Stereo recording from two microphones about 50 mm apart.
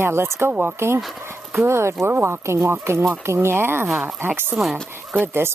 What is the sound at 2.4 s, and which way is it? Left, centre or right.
Speech, right.